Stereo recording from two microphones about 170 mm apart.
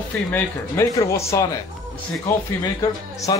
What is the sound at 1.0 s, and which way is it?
Speech, 15° left (ahead or behind).